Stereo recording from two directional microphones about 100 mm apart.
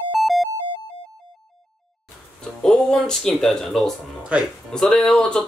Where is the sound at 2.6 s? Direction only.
5° left (ahead or behind).